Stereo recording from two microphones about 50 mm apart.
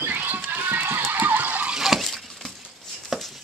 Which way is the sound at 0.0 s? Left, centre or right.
Right.